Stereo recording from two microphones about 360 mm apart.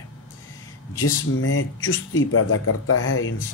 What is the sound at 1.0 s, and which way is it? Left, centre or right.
Speech, left.